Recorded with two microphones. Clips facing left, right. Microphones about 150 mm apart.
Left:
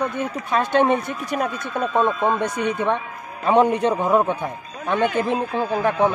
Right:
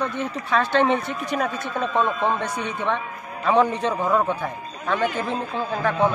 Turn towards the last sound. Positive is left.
turn(degrees=15)  # may be behind; listen again after turning